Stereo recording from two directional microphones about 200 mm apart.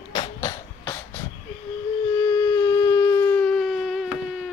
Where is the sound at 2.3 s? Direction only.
15° left (ahead or behind).